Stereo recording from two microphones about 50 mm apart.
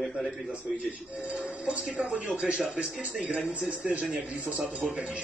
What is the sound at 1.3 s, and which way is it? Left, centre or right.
A man's voice, right.